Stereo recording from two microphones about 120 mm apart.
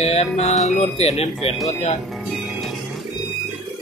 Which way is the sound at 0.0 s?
60° left (ahead or behind).